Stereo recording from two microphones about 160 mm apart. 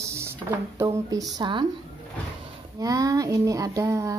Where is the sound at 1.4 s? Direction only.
30° right (ahead or behind).